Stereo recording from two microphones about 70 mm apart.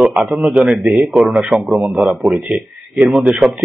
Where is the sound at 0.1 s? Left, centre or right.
Centre.